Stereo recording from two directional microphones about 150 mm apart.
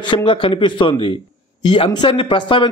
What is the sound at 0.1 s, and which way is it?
A man's voice, 35° left (ahead or behind).